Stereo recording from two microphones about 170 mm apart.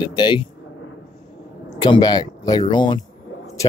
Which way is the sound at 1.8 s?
25° left (ahead or behind).